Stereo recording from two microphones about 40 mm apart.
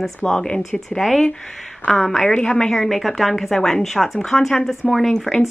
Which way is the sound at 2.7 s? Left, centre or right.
Centre.